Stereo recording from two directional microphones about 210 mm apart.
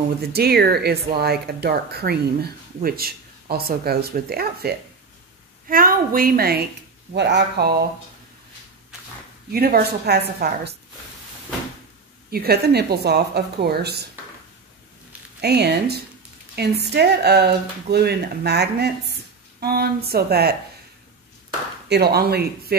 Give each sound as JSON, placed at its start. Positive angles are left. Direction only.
{"t": 0.2, "sound": "speech", "side_deg": -50}
{"t": 9.5, "sound": "speech", "side_deg": -45}
{"t": 12.3, "sound": "speech", "side_deg": -45}
{"t": 15.4, "sound": "speech", "side_deg": -50}
{"t": 21.8, "sound": "speech", "side_deg": -50}